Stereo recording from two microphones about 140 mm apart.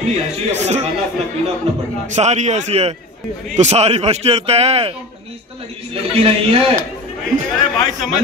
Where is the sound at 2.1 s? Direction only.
55° right (ahead or behind).